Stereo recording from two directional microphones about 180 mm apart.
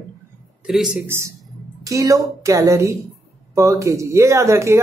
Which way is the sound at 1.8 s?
20° right (ahead or behind).